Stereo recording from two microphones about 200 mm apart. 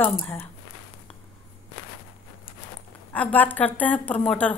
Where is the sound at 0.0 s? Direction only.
10° left (ahead or behind).